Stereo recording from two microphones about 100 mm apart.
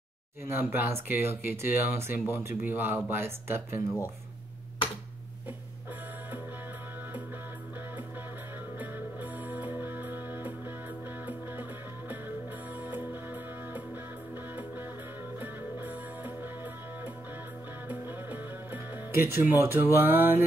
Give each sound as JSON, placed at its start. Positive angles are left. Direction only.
{"t": 0.5, "sound": "speech", "side_deg": -25}
{"t": 8.7, "sound": "music", "side_deg": -15}
{"t": 12.8, "sound": "music", "side_deg": -20}
{"t": 17.8, "sound": "music", "side_deg": -20}